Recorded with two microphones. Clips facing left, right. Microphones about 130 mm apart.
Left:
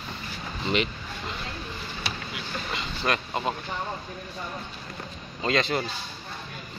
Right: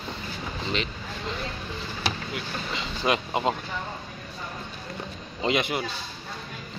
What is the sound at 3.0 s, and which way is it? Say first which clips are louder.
Speech: right 3 dB; 15° right (ahead or behind).